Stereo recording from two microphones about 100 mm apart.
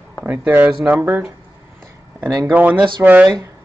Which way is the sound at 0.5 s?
20° right (ahead or behind).